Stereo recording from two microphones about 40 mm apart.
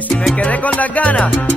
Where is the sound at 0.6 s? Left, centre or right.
Left.